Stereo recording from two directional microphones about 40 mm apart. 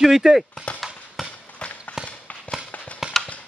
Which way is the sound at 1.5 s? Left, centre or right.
Left.